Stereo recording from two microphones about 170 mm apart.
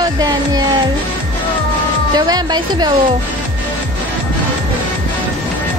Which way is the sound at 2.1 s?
25° right (ahead or behind).